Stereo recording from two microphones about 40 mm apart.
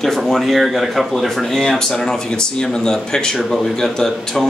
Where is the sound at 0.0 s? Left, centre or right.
Centre.